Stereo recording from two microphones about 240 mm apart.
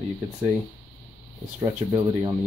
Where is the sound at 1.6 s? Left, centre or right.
Centre.